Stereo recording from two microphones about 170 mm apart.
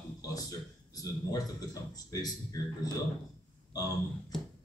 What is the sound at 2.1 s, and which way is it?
Speech, 20° left (ahead or behind).